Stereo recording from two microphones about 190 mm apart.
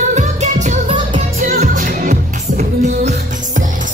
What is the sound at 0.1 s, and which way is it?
Music, 40° right (ahead or behind).